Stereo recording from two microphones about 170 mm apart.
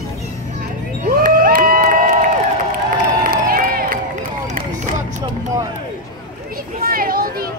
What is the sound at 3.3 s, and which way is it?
Crowd, 55° right (ahead or behind).